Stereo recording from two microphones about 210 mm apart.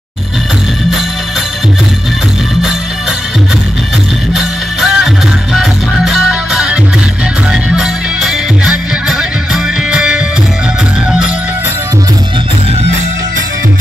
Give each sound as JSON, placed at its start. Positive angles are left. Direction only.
{"t": 4.3, "sound": "music", "side_deg": 0}